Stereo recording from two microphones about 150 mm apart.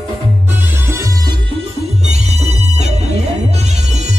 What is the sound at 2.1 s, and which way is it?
Music, 45° right (ahead or behind).